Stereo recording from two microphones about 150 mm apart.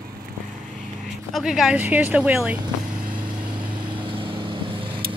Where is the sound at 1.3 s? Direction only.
5° right (ahead or behind).